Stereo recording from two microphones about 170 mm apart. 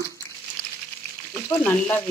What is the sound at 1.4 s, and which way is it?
Speech, 10° left (ahead or behind).